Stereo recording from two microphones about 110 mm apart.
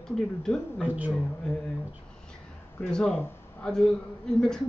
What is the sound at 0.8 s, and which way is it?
Speech, 15° right (ahead or behind).